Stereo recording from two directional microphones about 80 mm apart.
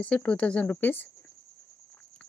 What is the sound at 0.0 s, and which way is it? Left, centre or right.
Speech, centre.